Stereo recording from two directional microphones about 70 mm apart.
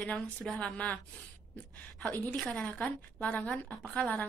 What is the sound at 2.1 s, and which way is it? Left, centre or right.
Speech, left.